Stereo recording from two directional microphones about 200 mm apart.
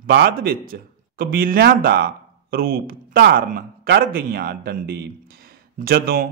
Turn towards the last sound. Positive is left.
turn(degrees=-50)  # may be behind; listen again after turning